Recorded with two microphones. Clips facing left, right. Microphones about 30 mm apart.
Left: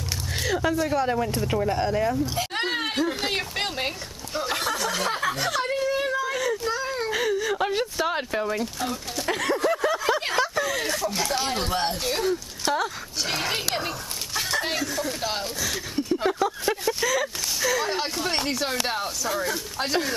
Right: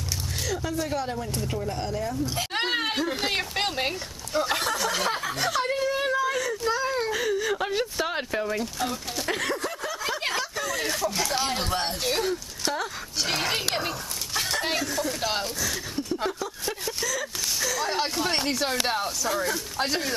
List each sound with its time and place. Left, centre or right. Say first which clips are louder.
0.4 s music: left 7 dB; left
0.7 s speech: left 5 dB; centre
1.5 s speech: left 7 dB; left
2.5 s speech: right 3 dB; centre
7.1 s whimper: left 2 dB; centre
7.3 s speech: left 1 dB; centre
15.7 s speech: left 3 dB; centre
16.3 s a sound: left 7 dB; left
16.8 s speech: left 5 dB; centre